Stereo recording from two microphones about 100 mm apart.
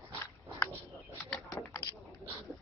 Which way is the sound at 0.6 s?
15° left (ahead or behind).